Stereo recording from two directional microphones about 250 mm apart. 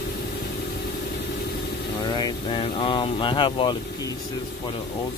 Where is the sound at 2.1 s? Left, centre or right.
Centre.